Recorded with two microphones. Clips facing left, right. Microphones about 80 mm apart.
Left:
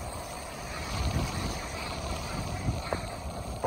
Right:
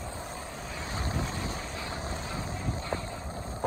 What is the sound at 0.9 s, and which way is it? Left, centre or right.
Boat, right.